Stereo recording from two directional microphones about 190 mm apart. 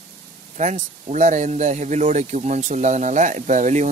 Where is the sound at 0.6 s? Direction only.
35° right (ahead or behind).